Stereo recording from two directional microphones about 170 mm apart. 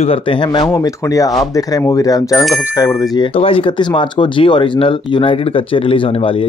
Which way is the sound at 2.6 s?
15° left (ahead or behind).